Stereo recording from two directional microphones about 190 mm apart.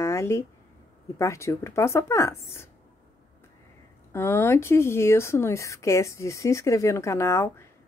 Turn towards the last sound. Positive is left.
turn(degrees=15)  # may be behind; listen again after turning